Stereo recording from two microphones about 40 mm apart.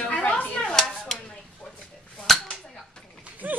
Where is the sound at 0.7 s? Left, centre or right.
Centre.